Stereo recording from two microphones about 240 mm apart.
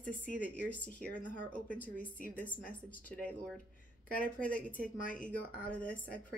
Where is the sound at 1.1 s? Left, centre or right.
Left.